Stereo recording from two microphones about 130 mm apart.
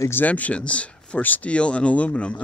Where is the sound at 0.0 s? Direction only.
15° left (ahead or behind).